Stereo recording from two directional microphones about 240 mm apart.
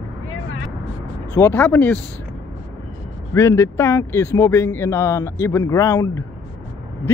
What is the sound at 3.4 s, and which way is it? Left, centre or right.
Speech, centre.